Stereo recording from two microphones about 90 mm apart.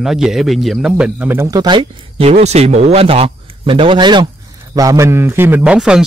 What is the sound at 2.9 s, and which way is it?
Speech, 90° right.